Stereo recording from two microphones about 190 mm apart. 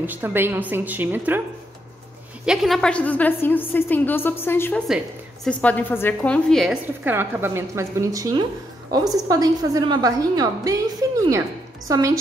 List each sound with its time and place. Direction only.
0.0 s a woman's voice: 10° right (ahead or behind)
2.4 s a woman's voice: centre (ahead or behind)
4.8 s a woman's voice: centre (ahead or behind); by 12.0 s 20° right (ahead or behind)